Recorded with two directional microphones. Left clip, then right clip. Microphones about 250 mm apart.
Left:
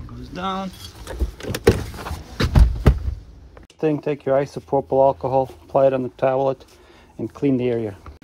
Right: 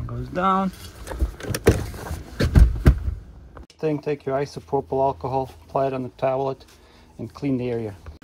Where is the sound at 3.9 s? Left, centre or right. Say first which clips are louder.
Left 4 dB; left.